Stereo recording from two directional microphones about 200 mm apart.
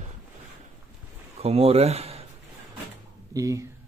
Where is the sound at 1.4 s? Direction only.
30° right (ahead or behind).